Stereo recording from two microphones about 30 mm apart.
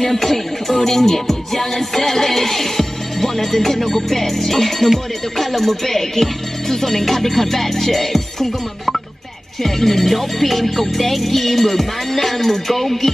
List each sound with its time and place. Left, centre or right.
0.0 s music: centre